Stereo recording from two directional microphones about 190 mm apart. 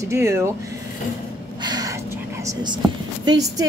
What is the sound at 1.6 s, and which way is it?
Gasp, 20° right (ahead or behind).